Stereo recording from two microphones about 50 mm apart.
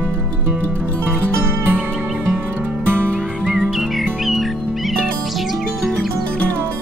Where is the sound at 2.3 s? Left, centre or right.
Right.